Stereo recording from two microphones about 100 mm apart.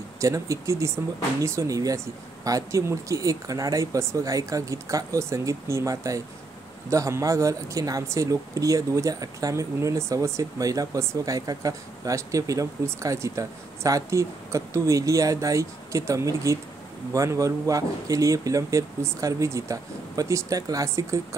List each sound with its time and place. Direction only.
0.2 s speech: 30° right (ahead or behind)